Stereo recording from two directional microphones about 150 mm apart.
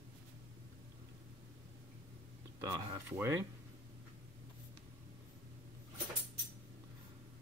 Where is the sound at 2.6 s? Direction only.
15° right (ahead or behind).